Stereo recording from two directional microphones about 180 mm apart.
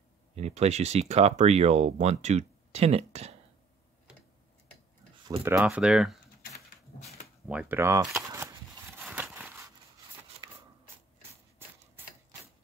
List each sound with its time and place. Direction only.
0.4 s speech: 35° right (ahead or behind)
5.4 s speech: 5° right (ahead or behind)
7.4 s speech: 10° right (ahead or behind)
9.0 s a sound: 10° right (ahead or behind)